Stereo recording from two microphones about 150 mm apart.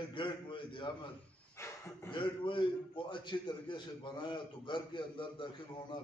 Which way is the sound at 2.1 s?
35° left (ahead or behind).